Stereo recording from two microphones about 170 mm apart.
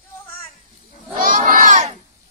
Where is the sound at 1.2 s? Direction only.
55° right (ahead or behind).